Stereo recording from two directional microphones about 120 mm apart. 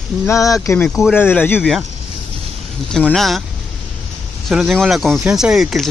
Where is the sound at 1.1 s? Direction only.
15° left (ahead or behind).